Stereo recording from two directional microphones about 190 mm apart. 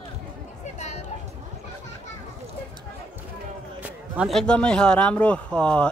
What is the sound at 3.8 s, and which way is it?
Speech, 5° right (ahead or behind).